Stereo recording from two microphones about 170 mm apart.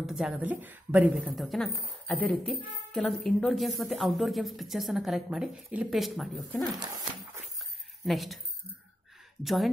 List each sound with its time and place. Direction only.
0.0 s a woman's voice: centre (ahead or behind)
6.7 s speech: 25° right (ahead or behind)
8.0 s speech: centre (ahead or behind)
9.4 s a woman's voice: centre (ahead or behind)